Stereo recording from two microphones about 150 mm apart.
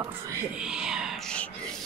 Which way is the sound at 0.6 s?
5° right (ahead or behind).